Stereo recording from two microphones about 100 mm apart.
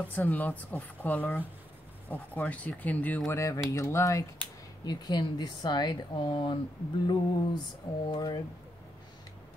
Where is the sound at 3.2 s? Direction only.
30° left (ahead or behind).